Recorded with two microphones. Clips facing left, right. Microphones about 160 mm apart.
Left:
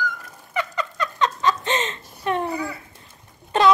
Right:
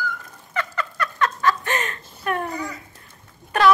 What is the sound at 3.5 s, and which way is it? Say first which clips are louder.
Wail: even; 20° left (ahead or behind).